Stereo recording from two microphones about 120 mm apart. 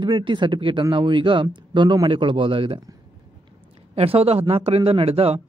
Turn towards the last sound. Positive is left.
turn(degrees=-55)  # may be behind; listen again after turning